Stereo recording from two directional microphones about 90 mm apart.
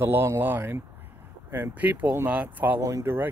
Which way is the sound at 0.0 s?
25° right (ahead or behind).